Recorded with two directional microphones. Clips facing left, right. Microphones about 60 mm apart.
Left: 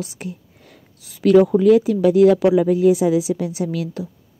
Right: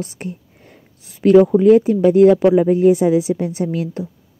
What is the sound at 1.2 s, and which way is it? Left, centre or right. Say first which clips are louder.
Speech: right 2 dB; centre.